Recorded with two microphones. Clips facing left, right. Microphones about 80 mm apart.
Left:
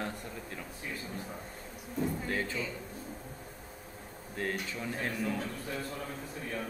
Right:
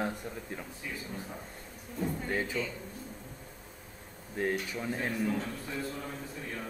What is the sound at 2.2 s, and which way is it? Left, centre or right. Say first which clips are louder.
Speech: right 1 dB; centre.